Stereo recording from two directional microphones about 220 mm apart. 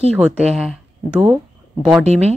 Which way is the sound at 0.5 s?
Centre (ahead or behind).